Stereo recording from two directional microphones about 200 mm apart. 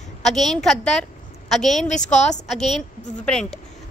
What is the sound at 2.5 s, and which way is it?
A woman's voice, centre (ahead or behind).